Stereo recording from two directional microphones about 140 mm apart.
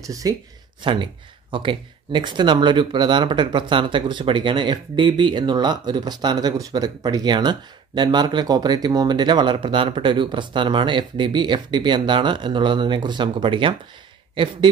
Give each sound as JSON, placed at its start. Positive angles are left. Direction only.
{"t": 0.0, "sound": "speech", "side_deg": -25}
{"t": 0.8, "sound": "speech", "side_deg": -35}